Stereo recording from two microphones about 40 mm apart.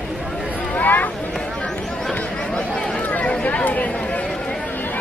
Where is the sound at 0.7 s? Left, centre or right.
Left.